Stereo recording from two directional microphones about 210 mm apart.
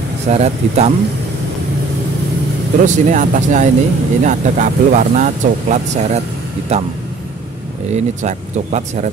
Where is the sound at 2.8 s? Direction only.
35° right (ahead or behind).